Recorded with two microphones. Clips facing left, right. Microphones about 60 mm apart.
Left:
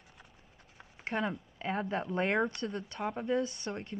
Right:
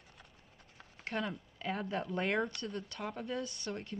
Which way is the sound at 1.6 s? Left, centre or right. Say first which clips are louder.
Left 3 dB; left.